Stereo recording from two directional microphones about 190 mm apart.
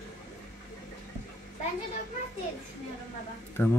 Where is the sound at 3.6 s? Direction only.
10° left (ahead or behind).